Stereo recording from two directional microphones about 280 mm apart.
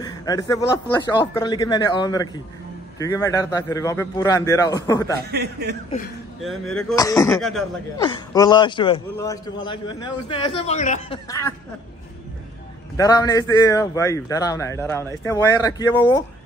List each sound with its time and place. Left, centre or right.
0.0 s a man's voice: centre
5.3 s a man's voice: right
6.4 s speech: centre
7.0 s a man's voice: centre
11.2 s a man's voice: centre
12.9 s a man's voice: centre